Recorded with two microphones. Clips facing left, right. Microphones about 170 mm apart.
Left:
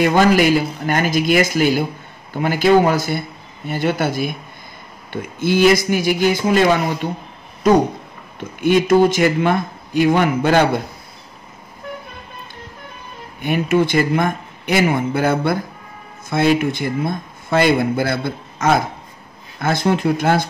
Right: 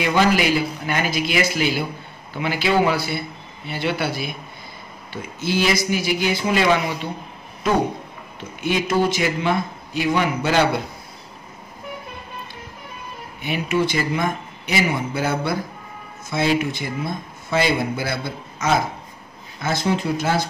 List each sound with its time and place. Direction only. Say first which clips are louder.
0.0 s speech: left 5 dB; 50° left (ahead or behind)
8.5 s speech: left 7 dB; 50° left (ahead or behind)
13.4 s speech: left 5 dB; 50° left (ahead or behind)